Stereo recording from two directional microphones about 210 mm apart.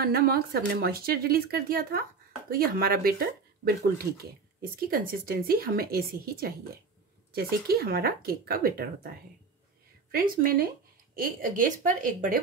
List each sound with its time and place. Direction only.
0.0 s speech: 45° right (ahead or behind)
10.1 s a woman's voice: 45° right (ahead or behind)